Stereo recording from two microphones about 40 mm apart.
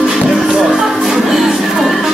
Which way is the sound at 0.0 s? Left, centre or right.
Centre.